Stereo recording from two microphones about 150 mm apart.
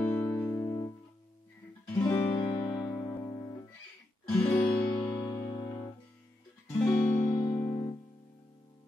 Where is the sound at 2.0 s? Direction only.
25° left (ahead or behind).